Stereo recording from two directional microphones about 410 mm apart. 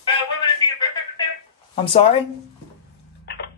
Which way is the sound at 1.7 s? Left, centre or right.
Centre.